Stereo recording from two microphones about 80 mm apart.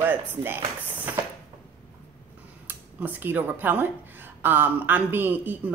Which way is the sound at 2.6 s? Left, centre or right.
Right.